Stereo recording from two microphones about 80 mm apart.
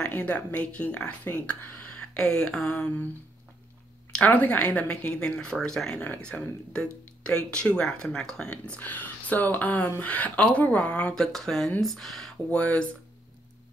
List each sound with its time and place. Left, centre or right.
0.0 s speech: centre
4.2 s speech: centre
8.7 s speech: left
11.1 s speech: centre
12.4 s speech: centre